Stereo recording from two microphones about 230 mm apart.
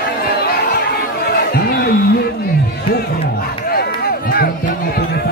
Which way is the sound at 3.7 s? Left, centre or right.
Left.